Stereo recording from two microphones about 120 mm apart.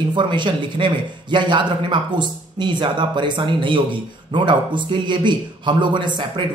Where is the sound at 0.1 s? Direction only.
40° right (ahead or behind).